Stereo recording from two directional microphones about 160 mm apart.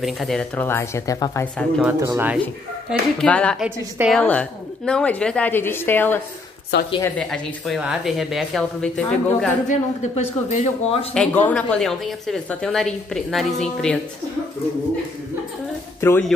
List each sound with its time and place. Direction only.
0.0 s a woman's voice: centre (ahead or behind); by 1.5 s 20° left (ahead or behind)
2.0 s a woman's voice: 15° right (ahead or behind)
2.9 s a woman's voice: 5° left (ahead or behind)
3.6 s a woman's voice: 10° right (ahead or behind)
4.2 s a woman's voice: 10° left (ahead or behind)
6.7 s a woman's voice: 90° left
7.2 s a woman's voice: 5° left (ahead or behind)
9.7 s a man's voice: 45° left (ahead or behind)
11.1 s a woman's voice: 10° left (ahead or behind)
16.0 s a woman's voice: 15° left (ahead or behind)